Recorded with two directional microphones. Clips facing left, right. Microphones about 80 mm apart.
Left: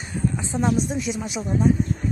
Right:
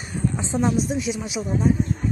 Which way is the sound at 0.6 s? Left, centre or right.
Centre.